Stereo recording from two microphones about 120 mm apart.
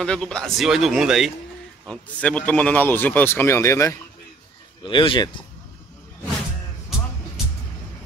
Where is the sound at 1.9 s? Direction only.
10° left (ahead or behind).